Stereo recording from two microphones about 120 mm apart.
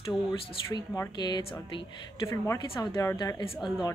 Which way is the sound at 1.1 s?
35° left (ahead or behind).